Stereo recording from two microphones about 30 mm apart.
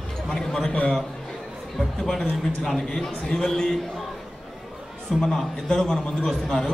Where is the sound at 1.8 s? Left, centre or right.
Centre.